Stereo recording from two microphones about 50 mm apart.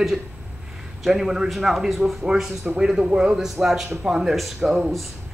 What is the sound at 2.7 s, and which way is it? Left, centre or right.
A man's voice, centre.